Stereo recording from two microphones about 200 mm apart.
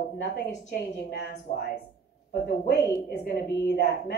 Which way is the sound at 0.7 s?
55° left (ahead or behind).